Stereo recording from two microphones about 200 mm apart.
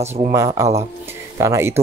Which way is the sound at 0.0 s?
35° right (ahead or behind).